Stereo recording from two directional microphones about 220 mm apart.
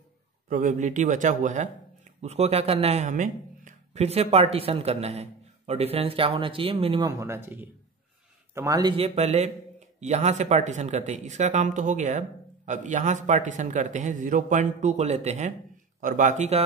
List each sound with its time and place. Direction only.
0.5 s a man's voice: 35° right (ahead or behind)